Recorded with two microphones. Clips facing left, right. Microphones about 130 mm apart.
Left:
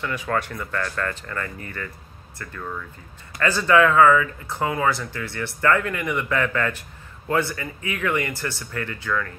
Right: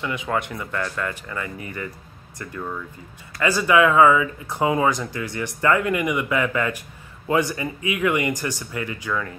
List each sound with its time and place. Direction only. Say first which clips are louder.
0.0 s speech: even; 15° right (ahead or behind)